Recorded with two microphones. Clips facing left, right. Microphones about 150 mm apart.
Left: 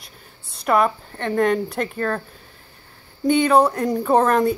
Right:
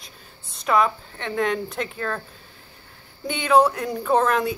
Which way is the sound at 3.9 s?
20° left (ahead or behind).